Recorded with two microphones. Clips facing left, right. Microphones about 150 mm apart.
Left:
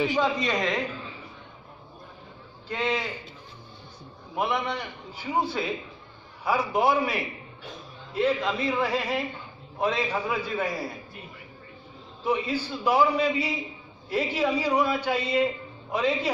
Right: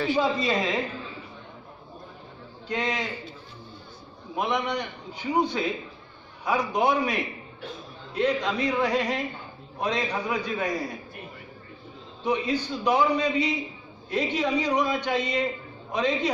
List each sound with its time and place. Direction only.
0.2 s a man's voice: 5° right (ahead or behind)
2.7 s a man's voice: 5° left (ahead or behind)
4.4 s a man's voice: 5° left (ahead or behind)
12.2 s a man's voice: 5° left (ahead or behind)